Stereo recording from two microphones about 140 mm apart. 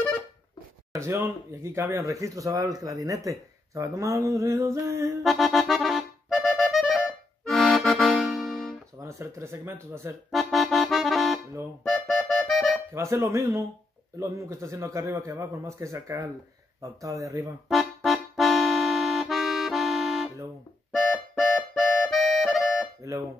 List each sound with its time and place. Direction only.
0.9 s speech: 20° right (ahead or behind)
5.2 s accordion: centre (ahead or behind)
9.0 s speech: 20° right (ahead or behind)
10.3 s accordion: centre (ahead or behind)
11.8 s music: centre (ahead or behind)
12.9 s speech: 20° right (ahead or behind)
17.6 s accordion: centre (ahead or behind)
20.9 s music: centre (ahead or behind)